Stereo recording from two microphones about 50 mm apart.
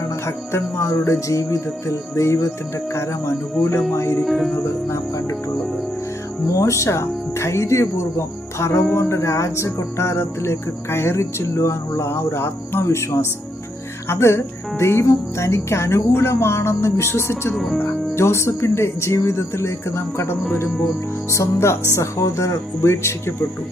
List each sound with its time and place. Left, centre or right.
0.5 s music: left
1.0 s music: left
4.2 s speech: centre
4.6 s music: left
6.5 s music: left
21.9 s speech: left